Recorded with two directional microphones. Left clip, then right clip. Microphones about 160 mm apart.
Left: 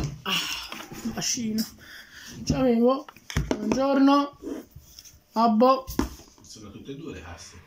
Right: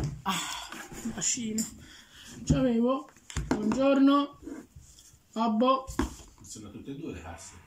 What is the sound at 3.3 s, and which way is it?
Hands, 20° left (ahead or behind).